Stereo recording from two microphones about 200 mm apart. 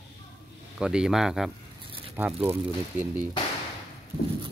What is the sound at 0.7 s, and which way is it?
Speech, 5° right (ahead or behind).